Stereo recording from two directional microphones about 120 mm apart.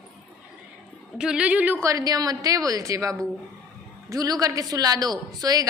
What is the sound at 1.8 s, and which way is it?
A woman's voice, 30° right (ahead or behind).